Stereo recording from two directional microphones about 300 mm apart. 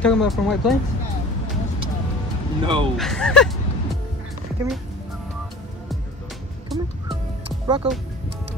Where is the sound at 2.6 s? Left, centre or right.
Centre.